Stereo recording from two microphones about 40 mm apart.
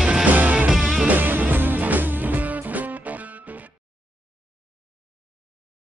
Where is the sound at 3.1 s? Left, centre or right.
Right.